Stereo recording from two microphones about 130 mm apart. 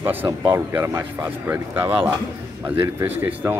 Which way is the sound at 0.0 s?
15° right (ahead or behind).